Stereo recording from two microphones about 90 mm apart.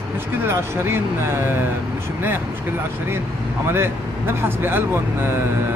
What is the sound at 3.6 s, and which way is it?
Speech, 25° right (ahead or behind).